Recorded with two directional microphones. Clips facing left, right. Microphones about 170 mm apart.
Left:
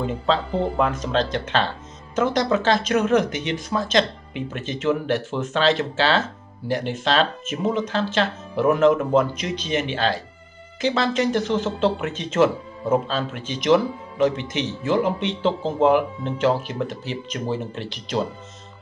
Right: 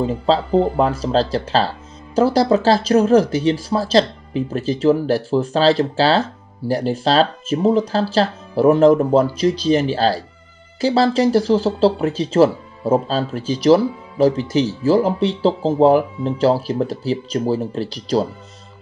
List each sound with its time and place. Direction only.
0.0 s speech: 35° right (ahead or behind)